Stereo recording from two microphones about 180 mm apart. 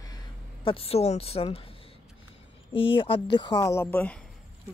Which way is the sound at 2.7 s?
30° left (ahead or behind).